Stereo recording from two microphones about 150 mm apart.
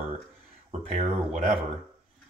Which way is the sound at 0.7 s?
40° right (ahead or behind).